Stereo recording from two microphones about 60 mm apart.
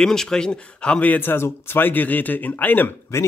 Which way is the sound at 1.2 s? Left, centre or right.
Left.